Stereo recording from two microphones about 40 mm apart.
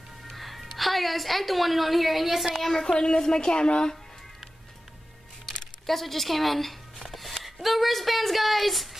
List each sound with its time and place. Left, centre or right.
0.3 s a woman's voice: centre
2.7 s a child's voice: centre
5.9 s speech: centre